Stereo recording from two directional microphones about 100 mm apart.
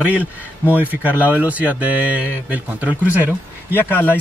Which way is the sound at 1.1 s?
15° right (ahead or behind).